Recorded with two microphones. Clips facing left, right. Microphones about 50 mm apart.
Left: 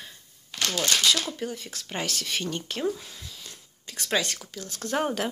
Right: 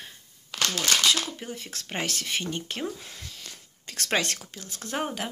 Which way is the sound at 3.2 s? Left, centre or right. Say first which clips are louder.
Right 1 dB; right.